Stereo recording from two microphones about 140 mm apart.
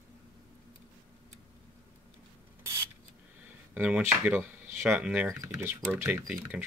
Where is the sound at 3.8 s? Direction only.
10° right (ahead or behind).